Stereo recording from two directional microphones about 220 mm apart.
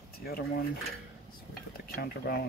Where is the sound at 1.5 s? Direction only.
45° left (ahead or behind).